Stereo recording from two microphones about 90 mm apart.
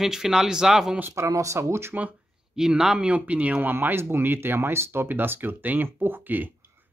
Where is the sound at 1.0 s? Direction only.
30° right (ahead or behind).